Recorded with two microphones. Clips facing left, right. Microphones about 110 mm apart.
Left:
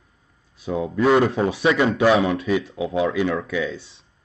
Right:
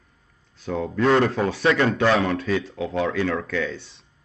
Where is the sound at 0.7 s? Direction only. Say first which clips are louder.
Left 2 dB; 10° left (ahead or behind).